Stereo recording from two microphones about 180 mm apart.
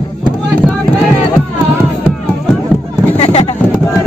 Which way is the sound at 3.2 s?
35° left (ahead or behind).